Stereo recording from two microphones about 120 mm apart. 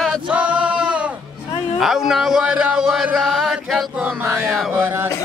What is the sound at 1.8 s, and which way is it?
Chant, 5° right (ahead or behind).